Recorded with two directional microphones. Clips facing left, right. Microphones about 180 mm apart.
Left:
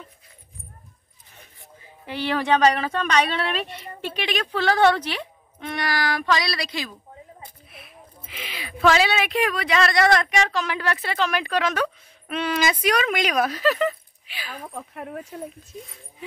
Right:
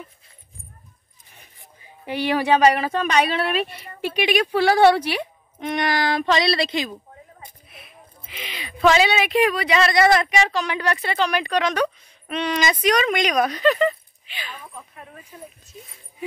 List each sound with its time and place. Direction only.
2.0 s speech: 15° right (ahead or behind)
7.7 s speech: centre (ahead or behind)
14.6 s speech: 70° left (ahead or behind)